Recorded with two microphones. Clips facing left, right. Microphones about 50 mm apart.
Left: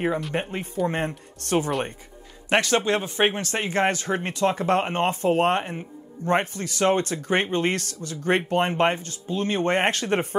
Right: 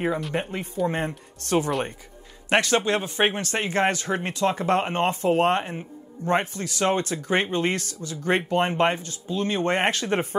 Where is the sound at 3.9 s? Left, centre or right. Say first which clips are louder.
Even; left.